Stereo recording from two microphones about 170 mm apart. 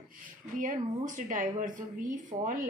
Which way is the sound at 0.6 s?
50° right (ahead or behind).